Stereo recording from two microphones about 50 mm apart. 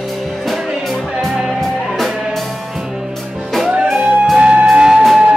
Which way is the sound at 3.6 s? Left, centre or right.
Centre.